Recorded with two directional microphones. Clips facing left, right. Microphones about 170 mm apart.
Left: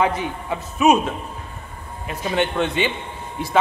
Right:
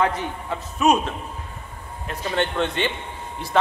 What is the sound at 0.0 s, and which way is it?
Speech, 10° left (ahead or behind).